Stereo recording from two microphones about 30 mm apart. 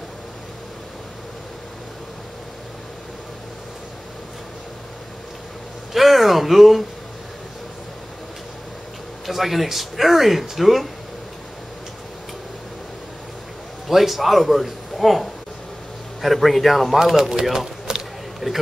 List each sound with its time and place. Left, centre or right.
5.9 s a man's voice: centre
9.2 s a man's voice: centre
13.8 s a man's voice: centre
17.0 s speech: centre
18.4 s a man's voice: centre